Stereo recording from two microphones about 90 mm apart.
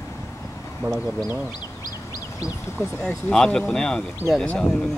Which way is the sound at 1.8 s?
45° left (ahead or behind).